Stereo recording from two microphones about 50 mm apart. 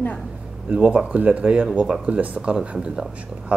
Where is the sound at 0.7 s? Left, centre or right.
Right.